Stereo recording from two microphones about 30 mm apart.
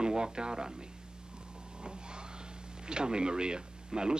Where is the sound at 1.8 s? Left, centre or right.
Right.